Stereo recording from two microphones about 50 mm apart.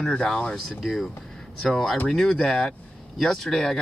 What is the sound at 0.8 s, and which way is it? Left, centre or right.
Speech, centre.